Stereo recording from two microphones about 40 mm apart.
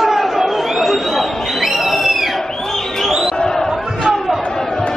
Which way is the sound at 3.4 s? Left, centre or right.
Centre.